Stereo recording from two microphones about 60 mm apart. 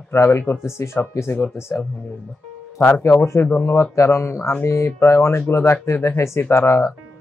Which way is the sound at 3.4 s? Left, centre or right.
Left.